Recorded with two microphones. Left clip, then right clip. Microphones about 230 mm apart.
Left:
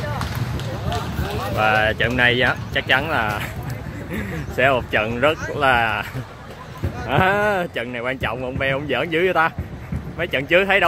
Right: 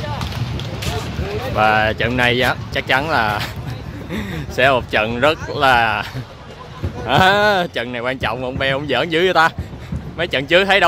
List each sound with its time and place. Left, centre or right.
1.6 s speech: right
7.1 s speech: centre